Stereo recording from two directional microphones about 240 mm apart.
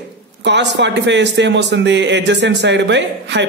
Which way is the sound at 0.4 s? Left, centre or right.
Right.